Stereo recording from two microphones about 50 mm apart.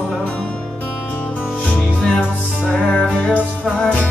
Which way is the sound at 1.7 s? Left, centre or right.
Left.